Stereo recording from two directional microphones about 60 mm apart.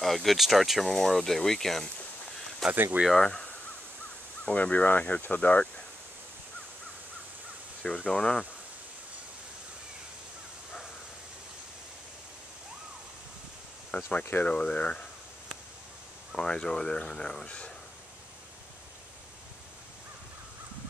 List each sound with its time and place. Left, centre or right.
0.0 s speech: centre
2.7 s speech: right
4.5 s speech: left
7.8 s speech: centre
13.9 s speech: left
14.4 s speech: centre
16.3 s speech: centre